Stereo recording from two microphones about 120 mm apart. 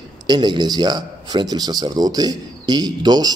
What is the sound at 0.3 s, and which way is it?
A man's voice, 35° right (ahead or behind).